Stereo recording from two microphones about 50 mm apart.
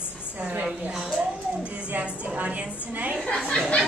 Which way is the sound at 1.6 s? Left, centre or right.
Right.